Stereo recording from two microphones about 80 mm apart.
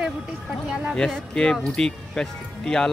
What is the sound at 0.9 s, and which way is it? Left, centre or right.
Speech, centre.